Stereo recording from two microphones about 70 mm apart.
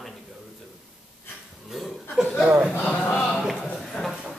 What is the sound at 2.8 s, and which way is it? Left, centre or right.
Speech, centre.